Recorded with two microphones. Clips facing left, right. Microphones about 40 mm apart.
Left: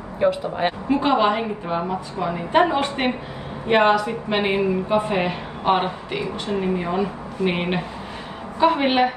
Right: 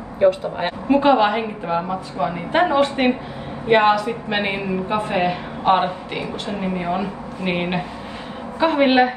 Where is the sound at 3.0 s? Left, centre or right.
Centre.